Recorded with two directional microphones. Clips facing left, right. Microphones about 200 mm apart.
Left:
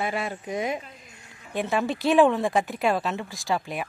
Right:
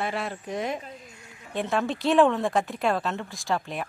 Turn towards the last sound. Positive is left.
turn(degrees=5)  # may be behind; listen again after turning